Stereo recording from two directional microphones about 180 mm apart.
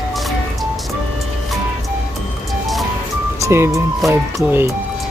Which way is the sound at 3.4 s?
15° right (ahead or behind).